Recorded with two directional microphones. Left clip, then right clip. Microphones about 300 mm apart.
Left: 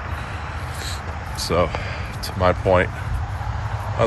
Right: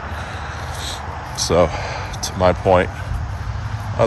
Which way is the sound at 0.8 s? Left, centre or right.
Centre.